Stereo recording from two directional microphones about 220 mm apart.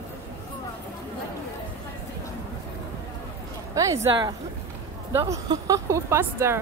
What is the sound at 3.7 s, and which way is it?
Speech, 15° right (ahead or behind).